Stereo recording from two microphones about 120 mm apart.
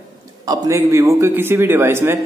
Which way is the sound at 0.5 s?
25° right (ahead or behind).